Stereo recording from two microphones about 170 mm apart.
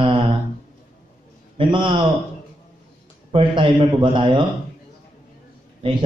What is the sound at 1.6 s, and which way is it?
Speech, 30° right (ahead or behind).